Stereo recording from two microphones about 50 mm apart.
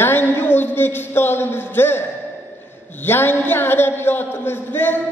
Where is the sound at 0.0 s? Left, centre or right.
Left.